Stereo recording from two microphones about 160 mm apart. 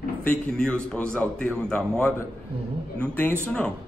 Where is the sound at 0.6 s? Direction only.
5° left (ahead or behind).